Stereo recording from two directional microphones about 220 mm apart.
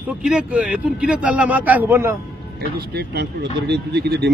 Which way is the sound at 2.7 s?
45° right (ahead or behind).